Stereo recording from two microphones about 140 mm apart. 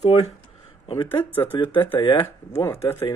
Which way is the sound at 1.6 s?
40° left (ahead or behind).